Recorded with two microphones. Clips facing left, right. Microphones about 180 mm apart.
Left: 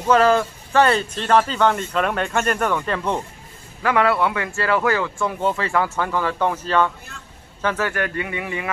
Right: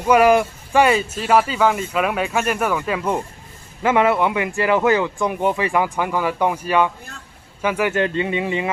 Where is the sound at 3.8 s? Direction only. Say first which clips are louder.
Right 2 dB; 20° right (ahead or behind).